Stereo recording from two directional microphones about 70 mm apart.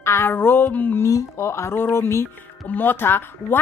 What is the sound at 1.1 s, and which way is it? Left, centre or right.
A woman's voice, left.